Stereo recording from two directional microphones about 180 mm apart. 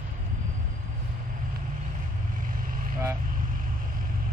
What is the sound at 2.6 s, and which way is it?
Vehicle, 50° right (ahead or behind).